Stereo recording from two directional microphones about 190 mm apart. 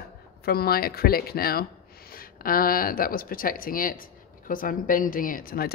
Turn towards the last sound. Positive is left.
turn(degrees=50)  # may be behind; listen again after turning